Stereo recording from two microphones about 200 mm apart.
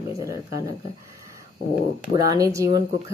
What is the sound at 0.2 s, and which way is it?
Speech, 15° right (ahead or behind).